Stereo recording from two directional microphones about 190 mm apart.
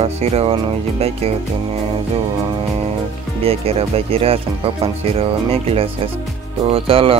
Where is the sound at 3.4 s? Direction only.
30° right (ahead or behind).